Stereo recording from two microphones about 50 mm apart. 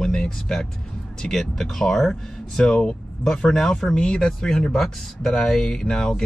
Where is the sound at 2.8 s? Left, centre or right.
Centre.